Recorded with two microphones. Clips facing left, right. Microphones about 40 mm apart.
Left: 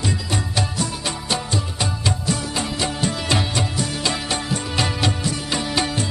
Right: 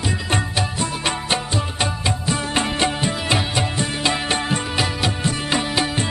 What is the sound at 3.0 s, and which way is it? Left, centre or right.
Music, right.